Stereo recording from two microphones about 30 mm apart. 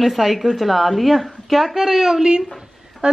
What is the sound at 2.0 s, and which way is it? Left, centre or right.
Speech, centre.